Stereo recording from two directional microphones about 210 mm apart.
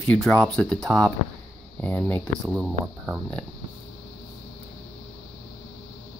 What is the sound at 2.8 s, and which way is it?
Speech, 5° right (ahead or behind).